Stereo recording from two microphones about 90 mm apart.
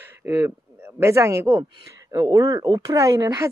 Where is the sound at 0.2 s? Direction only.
30° right (ahead or behind).